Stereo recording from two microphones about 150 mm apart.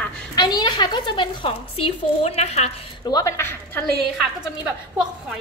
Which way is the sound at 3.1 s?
20° left (ahead or behind).